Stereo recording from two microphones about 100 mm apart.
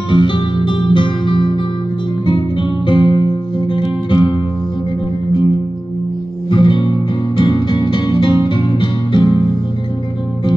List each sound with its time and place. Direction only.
0.1 s music: 50° left (ahead or behind)
6.5 s music: 50° left (ahead or behind)